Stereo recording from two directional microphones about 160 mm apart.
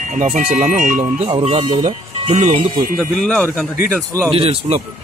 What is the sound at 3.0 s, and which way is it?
Speech, 5° left (ahead or behind).